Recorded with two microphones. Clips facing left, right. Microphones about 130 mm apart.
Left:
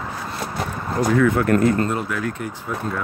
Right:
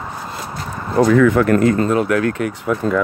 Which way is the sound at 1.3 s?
90° right.